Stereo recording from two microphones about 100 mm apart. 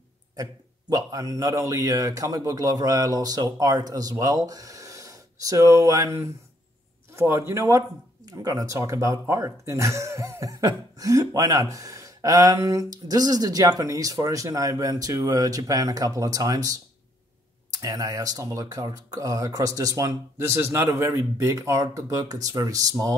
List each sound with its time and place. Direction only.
0.4 s speech: 35° right (ahead or behind)